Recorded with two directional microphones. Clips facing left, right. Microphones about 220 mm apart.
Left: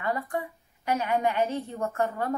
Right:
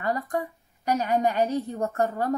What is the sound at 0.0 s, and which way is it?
A woman's voice, 40° right (ahead or behind).